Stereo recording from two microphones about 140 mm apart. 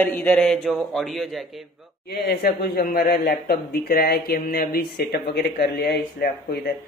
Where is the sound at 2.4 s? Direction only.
90° left.